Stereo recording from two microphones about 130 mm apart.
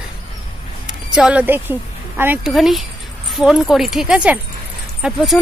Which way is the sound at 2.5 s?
Centre (ahead or behind).